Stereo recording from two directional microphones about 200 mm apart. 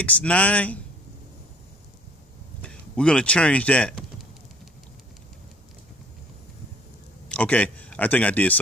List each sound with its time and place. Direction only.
0.0 s speech: 5° left (ahead or behind)
2.6 s speech: 5° left (ahead or behind)
7.2 s speech: 5° left (ahead or behind)